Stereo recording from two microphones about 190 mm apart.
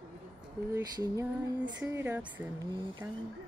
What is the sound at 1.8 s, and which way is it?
Speech, 10° right (ahead or behind).